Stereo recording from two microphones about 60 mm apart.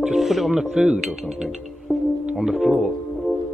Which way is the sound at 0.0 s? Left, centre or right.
Centre.